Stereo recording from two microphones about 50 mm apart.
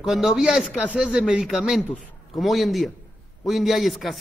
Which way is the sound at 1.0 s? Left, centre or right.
Centre.